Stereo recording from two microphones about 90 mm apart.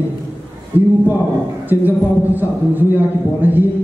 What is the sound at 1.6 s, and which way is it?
A man's voice, 20° right (ahead or behind).